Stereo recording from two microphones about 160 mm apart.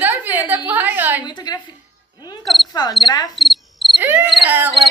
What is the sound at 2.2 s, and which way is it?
Cricket, 25° left (ahead or behind).